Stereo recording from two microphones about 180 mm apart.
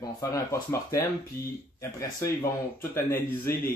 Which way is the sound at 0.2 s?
15° left (ahead or behind).